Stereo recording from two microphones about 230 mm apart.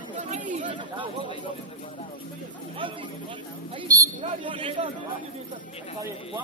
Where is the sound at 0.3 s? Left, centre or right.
Right.